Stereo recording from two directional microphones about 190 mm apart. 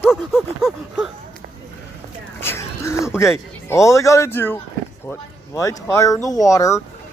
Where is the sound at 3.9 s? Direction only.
15° left (ahead or behind).